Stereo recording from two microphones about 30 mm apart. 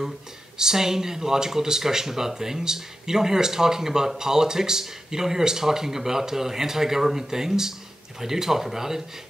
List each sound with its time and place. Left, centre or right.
0.6 s speech: centre